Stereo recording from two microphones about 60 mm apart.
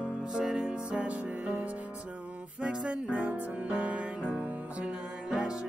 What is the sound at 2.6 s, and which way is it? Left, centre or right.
Music, right.